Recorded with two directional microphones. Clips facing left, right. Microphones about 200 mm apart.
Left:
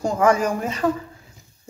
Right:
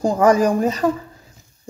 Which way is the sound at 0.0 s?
35° right (ahead or behind).